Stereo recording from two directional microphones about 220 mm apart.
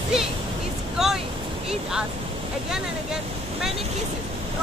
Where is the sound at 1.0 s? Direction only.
Centre (ahead or behind).